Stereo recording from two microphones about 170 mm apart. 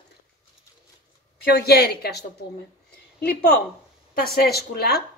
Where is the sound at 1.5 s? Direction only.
65° left (ahead or behind).